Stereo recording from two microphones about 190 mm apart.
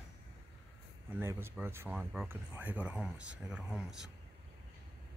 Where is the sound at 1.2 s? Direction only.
15° right (ahead or behind).